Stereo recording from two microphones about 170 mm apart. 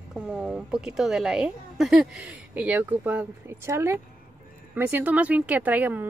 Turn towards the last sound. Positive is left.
turn(degrees=-10)  # may be behind; listen again after turning